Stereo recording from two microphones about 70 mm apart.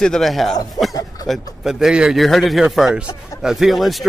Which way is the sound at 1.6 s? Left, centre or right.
Centre.